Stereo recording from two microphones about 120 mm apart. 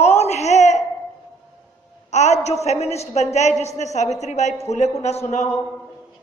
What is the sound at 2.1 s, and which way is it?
A woman's voice, 70° left (ahead or behind).